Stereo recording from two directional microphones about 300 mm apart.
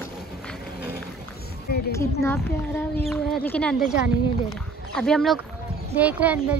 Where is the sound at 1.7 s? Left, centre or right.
Left.